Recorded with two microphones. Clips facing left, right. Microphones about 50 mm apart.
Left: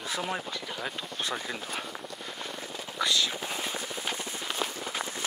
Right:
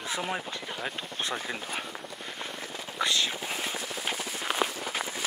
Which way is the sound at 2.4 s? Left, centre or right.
Centre.